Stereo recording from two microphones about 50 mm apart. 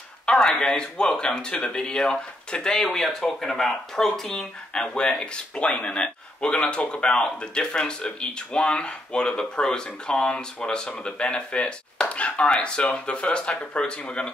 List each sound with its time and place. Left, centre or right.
0.3 s speech: centre
4.3 s speech: centre